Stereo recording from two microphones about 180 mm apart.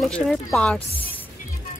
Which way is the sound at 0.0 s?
Centre (ahead or behind).